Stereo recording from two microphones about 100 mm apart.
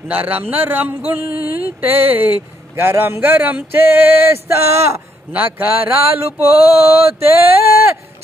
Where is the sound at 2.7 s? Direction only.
20° right (ahead or behind).